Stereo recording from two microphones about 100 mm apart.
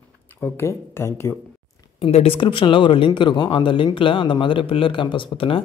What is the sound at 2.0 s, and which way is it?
A man's voice, 80° left.